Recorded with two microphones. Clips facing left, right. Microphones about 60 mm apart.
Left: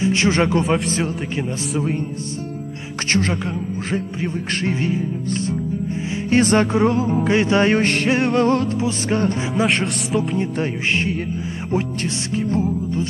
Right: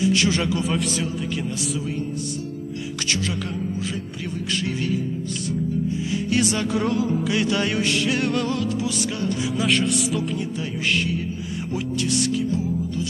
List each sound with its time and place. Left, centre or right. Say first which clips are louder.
0.0 s music: left 3 dB; left
3.1 s music: left 7 dB; left
6.8 s music: left 5 dB; left
8.2 s music: left 6 dB; left